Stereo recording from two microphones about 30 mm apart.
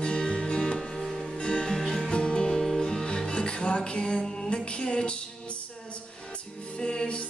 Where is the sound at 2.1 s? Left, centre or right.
Left.